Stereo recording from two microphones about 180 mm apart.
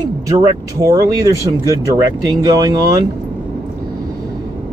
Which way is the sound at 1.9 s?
20° right (ahead or behind).